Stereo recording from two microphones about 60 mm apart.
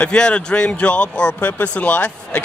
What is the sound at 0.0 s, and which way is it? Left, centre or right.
Speech, centre.